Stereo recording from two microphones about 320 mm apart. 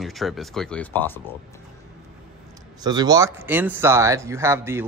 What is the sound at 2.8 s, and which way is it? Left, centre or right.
Speech, centre.